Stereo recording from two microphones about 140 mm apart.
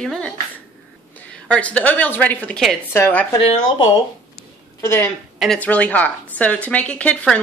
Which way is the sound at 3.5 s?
35° left (ahead or behind).